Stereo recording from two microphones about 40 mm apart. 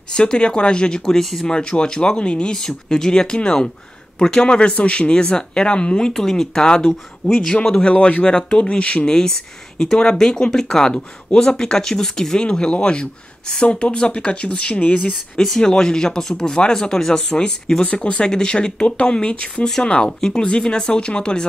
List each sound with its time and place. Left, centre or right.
0.1 s speech: left
1.0 s speech: centre
1.4 s speech: left
2.5 s speech: centre
12.4 s speech: left
15.6 s speech: centre